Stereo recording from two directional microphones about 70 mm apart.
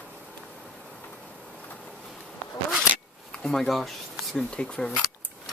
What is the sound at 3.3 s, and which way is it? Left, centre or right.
Speech, centre.